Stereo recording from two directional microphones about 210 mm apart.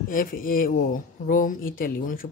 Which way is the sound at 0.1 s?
40° left (ahead or behind).